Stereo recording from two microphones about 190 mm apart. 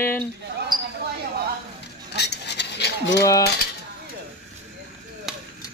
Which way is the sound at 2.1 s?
65° left (ahead or behind).